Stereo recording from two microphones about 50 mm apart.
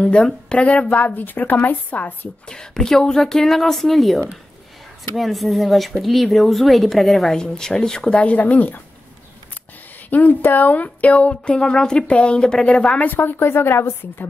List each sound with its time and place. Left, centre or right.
0.0 s a woman's voice: left
2.4 s a woman's voice: centre
8.2 s a woman's voice: left
10.0 s a woman's voice: left
11.5 s a woman's voice: centre
13.1 s a woman's voice: left